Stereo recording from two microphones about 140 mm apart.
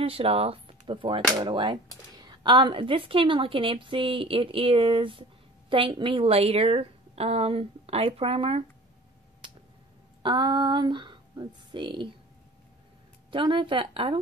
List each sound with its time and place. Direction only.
0.0 s a woman's voice: 40° right (ahead or behind)
10.2 s speech: 35° right (ahead or behind)
13.3 s speech: 35° right (ahead or behind)